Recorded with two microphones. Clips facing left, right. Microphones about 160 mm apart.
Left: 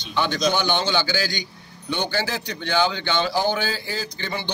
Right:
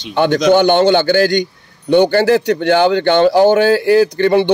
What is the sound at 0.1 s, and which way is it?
A man's voice, 55° right (ahead or behind).